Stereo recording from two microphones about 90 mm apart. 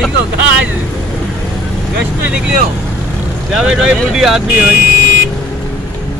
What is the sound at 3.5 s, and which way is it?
Speech, 5° right (ahead or behind).